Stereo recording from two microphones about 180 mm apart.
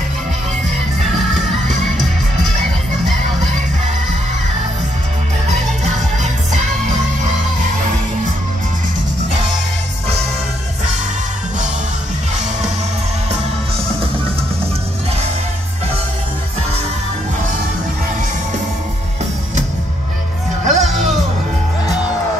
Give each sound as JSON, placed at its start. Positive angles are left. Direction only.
{"t": 5.5, "sound": "music", "side_deg": -40}
{"t": 20.6, "sound": "music", "side_deg": -40}